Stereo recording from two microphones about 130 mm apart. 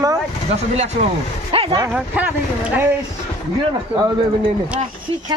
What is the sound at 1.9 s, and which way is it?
Speech, 10° right (ahead or behind).